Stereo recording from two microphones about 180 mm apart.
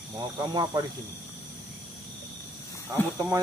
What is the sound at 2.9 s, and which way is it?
Speech, 15° right (ahead or behind).